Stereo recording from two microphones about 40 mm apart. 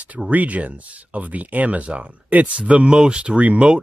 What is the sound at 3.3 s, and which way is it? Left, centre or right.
Speech, right.